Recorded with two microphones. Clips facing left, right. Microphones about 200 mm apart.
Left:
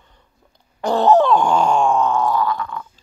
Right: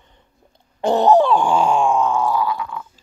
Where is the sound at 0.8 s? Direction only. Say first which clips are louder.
Even; 20° right (ahead or behind).